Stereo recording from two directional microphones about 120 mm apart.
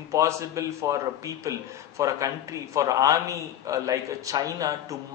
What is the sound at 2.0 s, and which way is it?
A man's voice, 25° right (ahead or behind).